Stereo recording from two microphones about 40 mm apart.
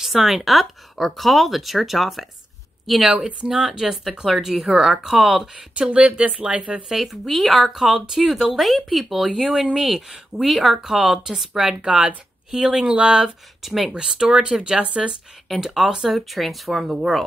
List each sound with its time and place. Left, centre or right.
0.0 s speech: centre
3.1 s speech: right
3.4 s a woman's voice: centre
5.8 s speech: right
6.9 s a woman's voice: centre
11.8 s speech: right
13.6 s a woman's voice: centre
14.3 s speech: right
15.6 s a woman's voice: centre